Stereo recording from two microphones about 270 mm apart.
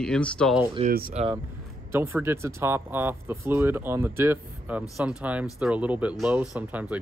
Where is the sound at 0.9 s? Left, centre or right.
Right.